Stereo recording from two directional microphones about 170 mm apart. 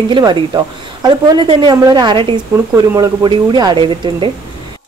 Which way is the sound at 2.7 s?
20° right (ahead or behind).